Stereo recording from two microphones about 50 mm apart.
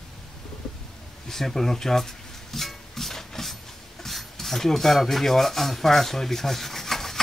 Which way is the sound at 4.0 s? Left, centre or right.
Centre.